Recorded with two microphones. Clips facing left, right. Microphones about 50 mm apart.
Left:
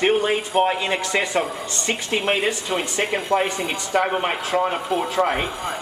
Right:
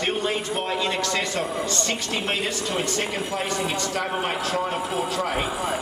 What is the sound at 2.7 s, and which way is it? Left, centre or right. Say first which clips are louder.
A man's voice: left 3 dB; centre.